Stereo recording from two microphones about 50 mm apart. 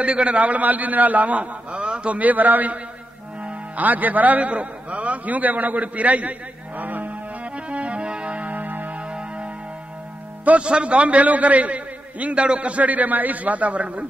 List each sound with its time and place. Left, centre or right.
0.0 s a man's voice: right
6.8 s livestock: right
7.5 s music: right
9.0 s music: right
10.4 s a man's voice: right